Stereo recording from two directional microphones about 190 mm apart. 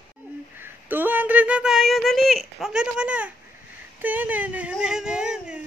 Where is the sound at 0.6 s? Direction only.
10° right (ahead or behind).